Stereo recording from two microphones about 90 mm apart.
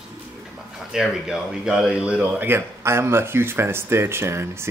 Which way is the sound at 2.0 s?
15° right (ahead or behind).